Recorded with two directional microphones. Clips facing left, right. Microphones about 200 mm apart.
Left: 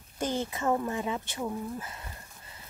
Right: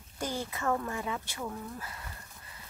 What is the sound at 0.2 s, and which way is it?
Speech, 20° left (ahead or behind).